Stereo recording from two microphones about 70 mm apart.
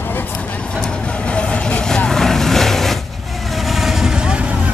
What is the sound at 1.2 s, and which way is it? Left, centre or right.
Vehicle, centre.